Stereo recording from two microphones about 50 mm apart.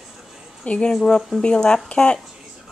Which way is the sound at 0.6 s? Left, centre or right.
Left.